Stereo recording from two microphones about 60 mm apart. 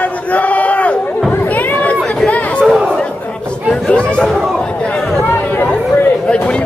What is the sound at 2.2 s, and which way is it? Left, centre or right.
Chatter, left.